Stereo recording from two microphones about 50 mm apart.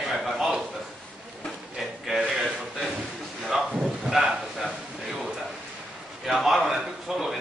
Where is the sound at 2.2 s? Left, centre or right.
Right.